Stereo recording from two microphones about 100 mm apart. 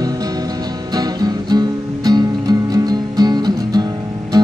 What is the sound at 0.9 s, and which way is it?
Music, 40° right (ahead or behind).